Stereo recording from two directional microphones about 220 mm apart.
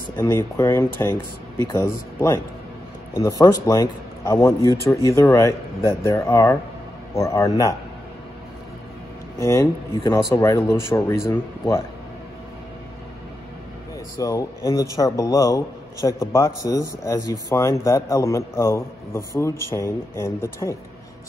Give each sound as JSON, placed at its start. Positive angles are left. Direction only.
{"t": 0.2, "sound": "speech", "side_deg": 15}
{"t": 2.1, "sound": "speech", "side_deg": 10}
{"t": 9.4, "sound": "speech", "side_deg": 15}
{"t": 14.2, "sound": "speech", "side_deg": 15}